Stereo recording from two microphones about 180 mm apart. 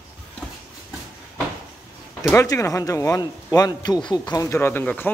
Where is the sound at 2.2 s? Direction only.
15° left (ahead or behind).